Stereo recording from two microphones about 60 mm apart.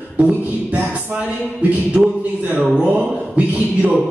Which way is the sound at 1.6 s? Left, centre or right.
Right.